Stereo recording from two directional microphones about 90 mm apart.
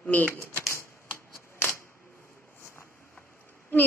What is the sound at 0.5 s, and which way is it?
Typewriter, 30° left (ahead or behind).